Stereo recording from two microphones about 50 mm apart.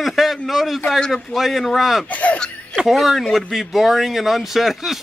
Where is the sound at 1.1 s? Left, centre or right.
Centre.